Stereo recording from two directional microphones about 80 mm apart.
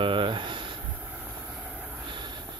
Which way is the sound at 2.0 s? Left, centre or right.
Right.